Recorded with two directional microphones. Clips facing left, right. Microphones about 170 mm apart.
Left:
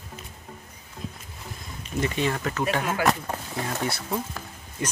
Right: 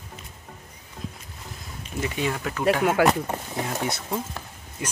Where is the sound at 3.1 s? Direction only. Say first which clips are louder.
Right 2 dB; 15° right (ahead or behind).